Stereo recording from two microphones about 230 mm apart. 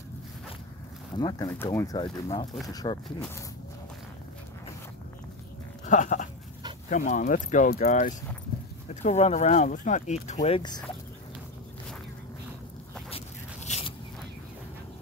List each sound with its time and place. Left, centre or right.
1.1 s speech: centre
5.9 s goat: left
6.9 s speech: left
13.7 s zipper: left